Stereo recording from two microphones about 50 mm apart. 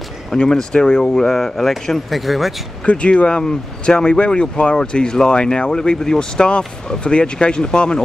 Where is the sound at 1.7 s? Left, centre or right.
Centre.